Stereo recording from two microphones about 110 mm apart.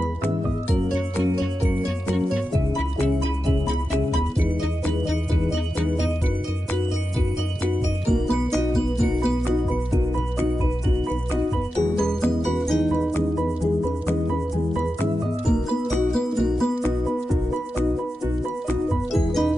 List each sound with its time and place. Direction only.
8.1 s music: 5° left (ahead or behind)
12.4 s music: centre (ahead or behind)
15.9 s music: 5° left (ahead or behind)
19.1 s music: centre (ahead or behind)